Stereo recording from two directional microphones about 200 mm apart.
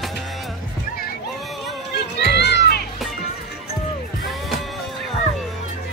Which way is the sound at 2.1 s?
55° left (ahead or behind).